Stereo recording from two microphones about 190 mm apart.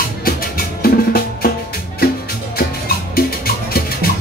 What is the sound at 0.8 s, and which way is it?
Music, 50° left (ahead or behind).